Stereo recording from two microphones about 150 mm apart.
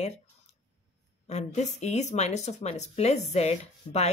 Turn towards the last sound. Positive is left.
turn(degrees=45)  # may be behind; listen again after turning